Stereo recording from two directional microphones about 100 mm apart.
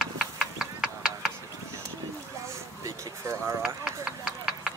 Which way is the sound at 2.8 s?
30° right (ahead or behind).